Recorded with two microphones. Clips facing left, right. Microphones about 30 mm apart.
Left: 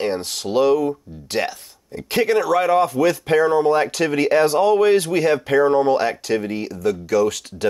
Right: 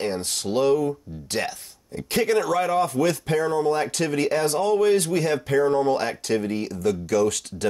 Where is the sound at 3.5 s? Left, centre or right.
Left.